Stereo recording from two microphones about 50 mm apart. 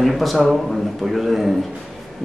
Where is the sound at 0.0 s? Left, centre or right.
Centre.